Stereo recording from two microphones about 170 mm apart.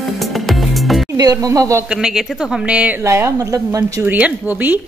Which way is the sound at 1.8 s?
5° right (ahead or behind).